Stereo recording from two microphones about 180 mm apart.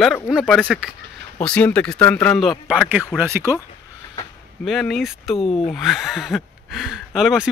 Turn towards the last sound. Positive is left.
turn(degrees=-5)  # may be behind; listen again after turning